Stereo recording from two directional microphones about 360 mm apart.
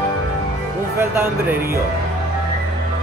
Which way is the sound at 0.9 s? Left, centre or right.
Centre.